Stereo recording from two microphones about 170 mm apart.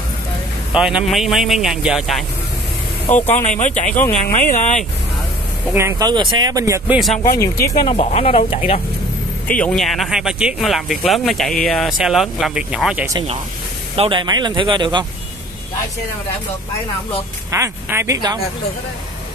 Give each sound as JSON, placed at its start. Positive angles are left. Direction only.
{"t": 0.7, "sound": "speech", "side_deg": -5}
{"t": 3.2, "sound": "speech", "side_deg": 10}
{"t": 3.4, "sound": "speech", "side_deg": 45}
{"t": 5.7, "sound": "speech", "side_deg": -15}
{"t": 7.8, "sound": "speech", "side_deg": 35}
{"t": 9.5, "sound": "speech", "side_deg": 5}
{"t": 13.9, "sound": "speech", "side_deg": -30}
{"t": 17.5, "sound": "speech", "side_deg": -15}